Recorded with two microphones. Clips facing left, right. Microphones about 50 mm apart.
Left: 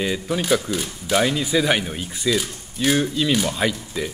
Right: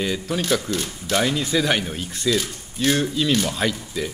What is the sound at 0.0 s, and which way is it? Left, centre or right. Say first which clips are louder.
Speech: left 1 dB; centre.